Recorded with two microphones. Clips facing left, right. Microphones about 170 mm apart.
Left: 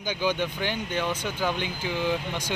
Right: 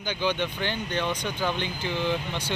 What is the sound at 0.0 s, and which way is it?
Speech, 10° left (ahead or behind).